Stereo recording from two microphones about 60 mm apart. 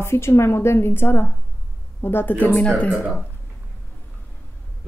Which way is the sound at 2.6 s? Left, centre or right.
Centre.